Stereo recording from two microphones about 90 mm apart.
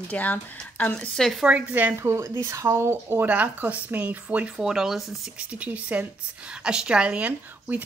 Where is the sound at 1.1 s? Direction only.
5° left (ahead or behind).